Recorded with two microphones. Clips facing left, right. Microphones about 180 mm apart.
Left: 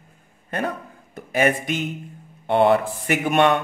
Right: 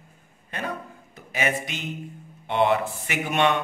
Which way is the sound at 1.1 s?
50° left (ahead or behind).